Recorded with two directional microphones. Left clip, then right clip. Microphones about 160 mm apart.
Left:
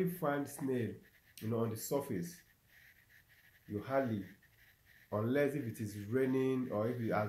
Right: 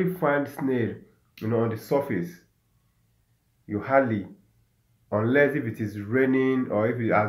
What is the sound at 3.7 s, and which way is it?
Speech, 10° left (ahead or behind).